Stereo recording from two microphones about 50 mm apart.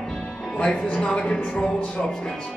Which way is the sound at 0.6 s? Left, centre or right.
Left.